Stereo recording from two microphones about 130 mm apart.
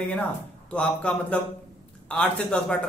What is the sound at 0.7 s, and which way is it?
A man's voice, 10° left (ahead or behind).